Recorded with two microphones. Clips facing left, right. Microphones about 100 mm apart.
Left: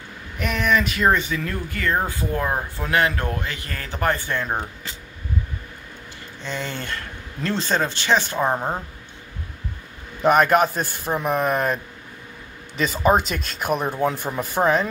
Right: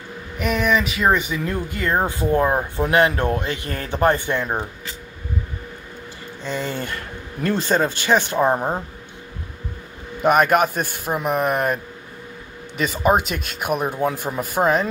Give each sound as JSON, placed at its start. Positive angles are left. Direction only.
{"t": 0.4, "sound": "speech", "side_deg": -5}
{"t": 1.3, "sound": "speech", "side_deg": -20}
{"t": 6.4, "sound": "speech", "side_deg": -10}
{"t": 10.2, "sound": "speech", "side_deg": -5}